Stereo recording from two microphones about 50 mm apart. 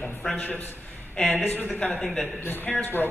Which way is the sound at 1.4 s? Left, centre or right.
Left.